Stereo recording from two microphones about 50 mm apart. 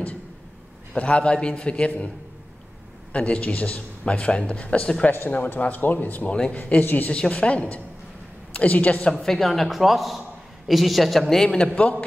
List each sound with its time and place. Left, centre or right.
0.9 s a man's voice: left
3.1 s a man's voice: left
5.1 s speech: left
7.1 s a man's voice: left
9.2 s a man's voice: centre